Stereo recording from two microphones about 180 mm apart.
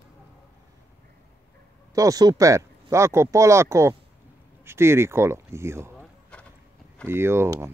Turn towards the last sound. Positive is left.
turn(degrees=-15)  # may be behind; listen again after turning